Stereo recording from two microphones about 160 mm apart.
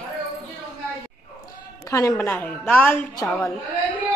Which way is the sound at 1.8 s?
20° left (ahead or behind).